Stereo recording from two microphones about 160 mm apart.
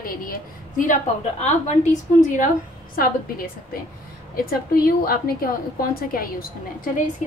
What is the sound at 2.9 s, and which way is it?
A woman's voice, 65° left (ahead or behind).